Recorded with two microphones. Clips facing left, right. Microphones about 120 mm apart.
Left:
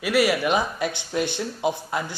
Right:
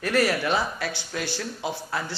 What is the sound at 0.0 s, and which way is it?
Speech, 10° left (ahead or behind).